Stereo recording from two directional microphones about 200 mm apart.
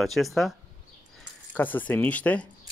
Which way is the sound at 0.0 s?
Centre (ahead or behind).